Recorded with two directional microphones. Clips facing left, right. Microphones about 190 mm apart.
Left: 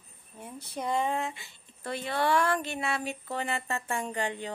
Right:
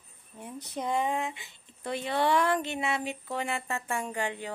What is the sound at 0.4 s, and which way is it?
Speech, 20° right (ahead or behind).